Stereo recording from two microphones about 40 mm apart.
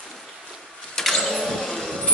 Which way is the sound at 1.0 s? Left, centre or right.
Centre.